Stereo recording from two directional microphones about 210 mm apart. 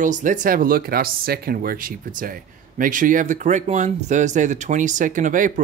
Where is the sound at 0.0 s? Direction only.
40° right (ahead or behind).